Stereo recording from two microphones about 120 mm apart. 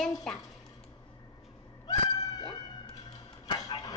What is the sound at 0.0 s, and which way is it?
Speech, 5° left (ahead or behind).